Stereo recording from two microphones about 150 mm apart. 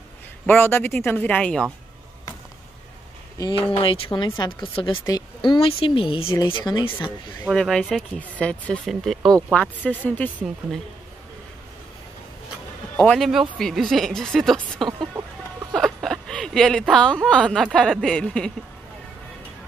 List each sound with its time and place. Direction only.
0.5 s speech: 15° left (ahead or behind)
3.3 s speech: 30° left (ahead or behind)
7.4 s speech: 5° left (ahead or behind)
13.2 s speech: centre (ahead or behind)